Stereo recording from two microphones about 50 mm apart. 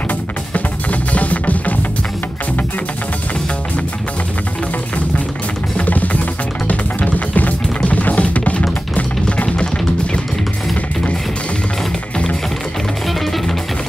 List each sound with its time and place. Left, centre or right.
0.5 s music: left
5.8 s music: left
8.9 s drum kit: left